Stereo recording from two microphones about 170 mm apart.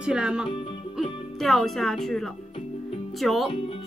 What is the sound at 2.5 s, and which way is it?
Music, 35° left (ahead or behind).